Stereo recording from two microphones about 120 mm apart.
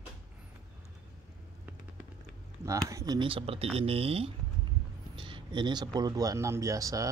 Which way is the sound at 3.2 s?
50° right (ahead or behind).